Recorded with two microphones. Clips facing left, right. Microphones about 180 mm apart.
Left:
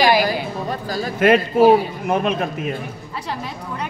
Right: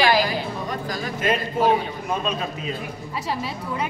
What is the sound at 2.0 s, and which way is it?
Speech, 60° left (ahead or behind).